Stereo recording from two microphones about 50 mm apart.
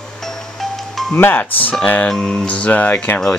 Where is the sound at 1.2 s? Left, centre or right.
Left.